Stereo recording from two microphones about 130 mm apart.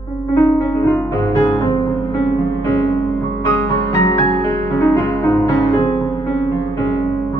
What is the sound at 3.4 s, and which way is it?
Music, 25° left (ahead or behind).